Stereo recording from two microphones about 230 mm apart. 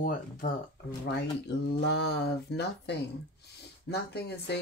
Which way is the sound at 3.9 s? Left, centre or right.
Left.